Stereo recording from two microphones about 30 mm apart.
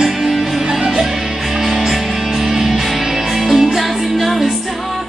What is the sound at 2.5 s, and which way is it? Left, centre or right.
Music, centre.